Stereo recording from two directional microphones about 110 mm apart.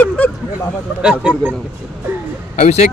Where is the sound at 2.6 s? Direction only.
90° left.